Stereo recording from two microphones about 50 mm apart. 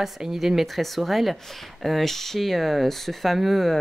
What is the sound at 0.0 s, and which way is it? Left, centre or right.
Speech, centre.